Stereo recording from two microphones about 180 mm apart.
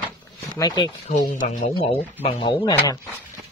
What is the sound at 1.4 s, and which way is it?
Speech, 50° left (ahead or behind).